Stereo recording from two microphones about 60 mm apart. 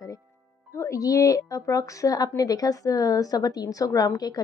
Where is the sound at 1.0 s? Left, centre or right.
Left.